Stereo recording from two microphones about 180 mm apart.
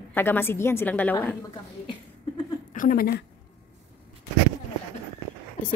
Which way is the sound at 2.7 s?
50° left (ahead or behind).